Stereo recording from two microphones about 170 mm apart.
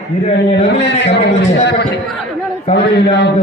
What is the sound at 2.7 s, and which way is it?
Speech, 85° left.